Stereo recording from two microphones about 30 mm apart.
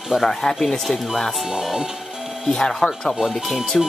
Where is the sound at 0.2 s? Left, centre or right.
Centre.